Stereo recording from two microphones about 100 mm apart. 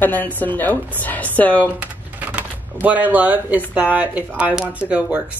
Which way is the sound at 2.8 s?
15° right (ahead or behind).